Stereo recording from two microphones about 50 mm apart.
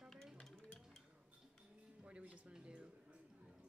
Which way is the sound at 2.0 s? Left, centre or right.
Right.